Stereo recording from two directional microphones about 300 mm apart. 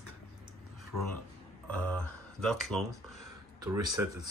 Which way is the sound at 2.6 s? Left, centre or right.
Centre.